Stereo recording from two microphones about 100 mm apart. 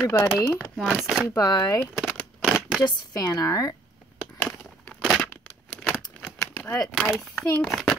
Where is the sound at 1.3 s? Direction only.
40° left (ahead or behind).